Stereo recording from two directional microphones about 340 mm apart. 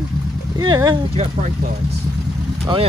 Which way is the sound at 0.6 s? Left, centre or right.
Centre.